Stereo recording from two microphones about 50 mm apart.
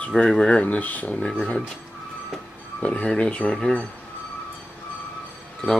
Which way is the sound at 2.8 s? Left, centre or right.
Centre.